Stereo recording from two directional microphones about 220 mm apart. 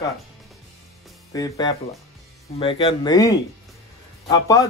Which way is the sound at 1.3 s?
15° left (ahead or behind).